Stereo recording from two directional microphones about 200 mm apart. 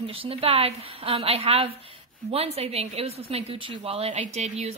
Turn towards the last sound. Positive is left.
turn(degrees=-35)  # may be behind; listen again after turning